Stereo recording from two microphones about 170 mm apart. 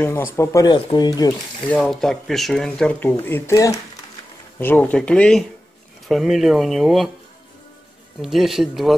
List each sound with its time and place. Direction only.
0.0 s speech: 15° left (ahead or behind)
1.7 s speech: 5° left (ahead or behind)
8.2 s speech: centre (ahead or behind)